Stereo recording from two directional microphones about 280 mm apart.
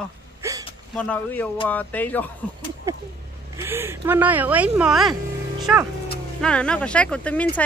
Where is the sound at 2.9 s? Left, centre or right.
Centre.